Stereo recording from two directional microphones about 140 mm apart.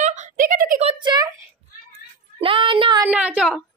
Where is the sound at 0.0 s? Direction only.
60° right (ahead or behind).